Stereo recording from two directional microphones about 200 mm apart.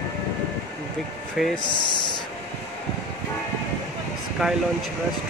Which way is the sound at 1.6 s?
25° left (ahead or behind).